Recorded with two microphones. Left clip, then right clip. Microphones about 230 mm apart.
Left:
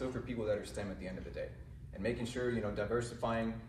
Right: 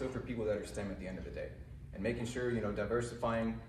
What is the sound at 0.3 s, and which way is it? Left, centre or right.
A man's voice, centre.